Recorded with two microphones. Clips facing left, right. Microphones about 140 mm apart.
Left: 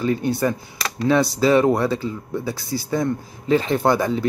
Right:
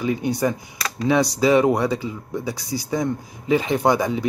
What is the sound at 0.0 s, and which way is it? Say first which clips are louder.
Speech: left 1 dB; 15° right (ahead or behind).